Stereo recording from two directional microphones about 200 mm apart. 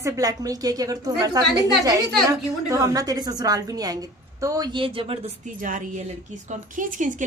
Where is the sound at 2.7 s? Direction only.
15° right (ahead or behind).